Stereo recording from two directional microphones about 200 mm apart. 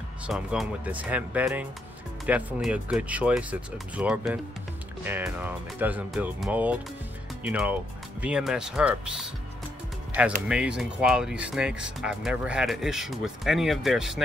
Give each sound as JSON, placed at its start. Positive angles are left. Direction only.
{"t": 0.3, "sound": "speech", "side_deg": -5}
{"t": 10.5, "sound": "speech", "side_deg": -5}